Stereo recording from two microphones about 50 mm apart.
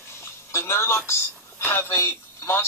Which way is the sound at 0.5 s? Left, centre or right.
Left.